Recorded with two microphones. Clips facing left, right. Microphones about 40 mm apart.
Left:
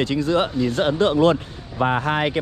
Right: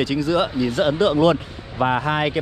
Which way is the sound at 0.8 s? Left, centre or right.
Right.